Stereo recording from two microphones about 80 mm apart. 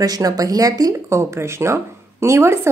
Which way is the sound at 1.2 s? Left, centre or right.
Right.